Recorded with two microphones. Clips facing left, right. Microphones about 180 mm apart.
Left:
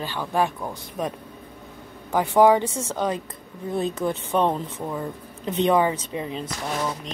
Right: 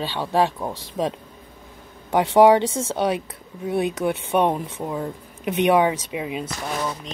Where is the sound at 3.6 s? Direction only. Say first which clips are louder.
Right 3 dB; 10° right (ahead or behind).